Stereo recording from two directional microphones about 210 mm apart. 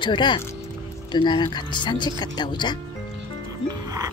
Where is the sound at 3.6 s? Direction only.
15° right (ahead or behind).